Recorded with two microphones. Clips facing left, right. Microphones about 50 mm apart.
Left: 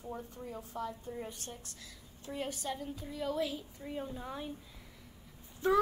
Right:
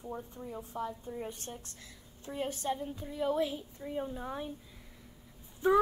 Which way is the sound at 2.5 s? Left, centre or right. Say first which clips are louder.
Right 4 dB; right.